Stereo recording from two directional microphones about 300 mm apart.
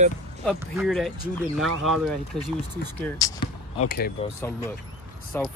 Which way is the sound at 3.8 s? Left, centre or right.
Left.